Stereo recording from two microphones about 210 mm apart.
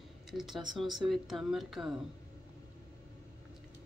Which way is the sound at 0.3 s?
Centre (ahead or behind).